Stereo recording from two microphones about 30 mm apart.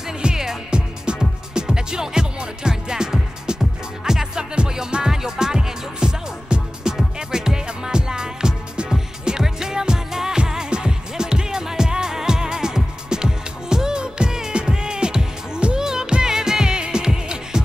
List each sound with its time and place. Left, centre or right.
0.2 s music: right